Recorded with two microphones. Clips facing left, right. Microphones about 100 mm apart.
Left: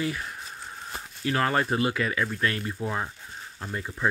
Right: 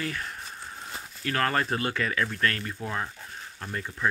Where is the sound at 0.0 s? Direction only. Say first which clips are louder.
Left 3 dB; 15° left (ahead or behind).